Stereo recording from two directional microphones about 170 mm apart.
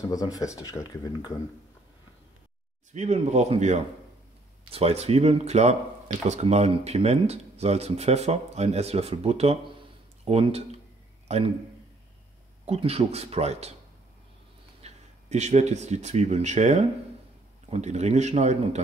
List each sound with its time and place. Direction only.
0.1 s speech: 20° left (ahead or behind)
2.9 s a man's voice: 45° right (ahead or behind)
12.6 s speech: 35° right (ahead or behind)
14.8 s speech: 40° right (ahead or behind)